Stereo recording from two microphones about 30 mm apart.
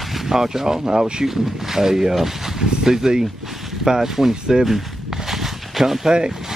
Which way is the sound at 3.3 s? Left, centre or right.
Centre.